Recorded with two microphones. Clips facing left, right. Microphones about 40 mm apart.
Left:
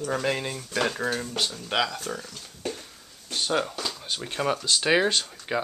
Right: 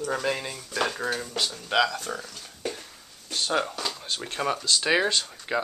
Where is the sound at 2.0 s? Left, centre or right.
Centre.